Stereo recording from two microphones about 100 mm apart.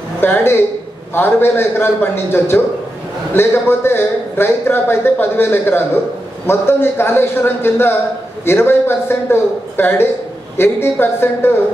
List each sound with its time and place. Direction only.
0.2 s a man's voice: 25° left (ahead or behind)